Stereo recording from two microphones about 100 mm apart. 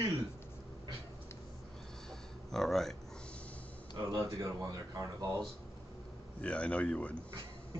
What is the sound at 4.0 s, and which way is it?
Speech, 30° right (ahead or behind).